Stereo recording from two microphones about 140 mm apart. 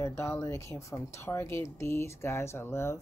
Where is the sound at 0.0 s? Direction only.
20° left (ahead or behind).